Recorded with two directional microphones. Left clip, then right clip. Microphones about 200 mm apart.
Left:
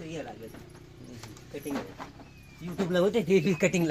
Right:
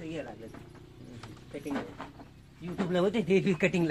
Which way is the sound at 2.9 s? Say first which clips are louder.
Left 3 dB; 50° left (ahead or behind).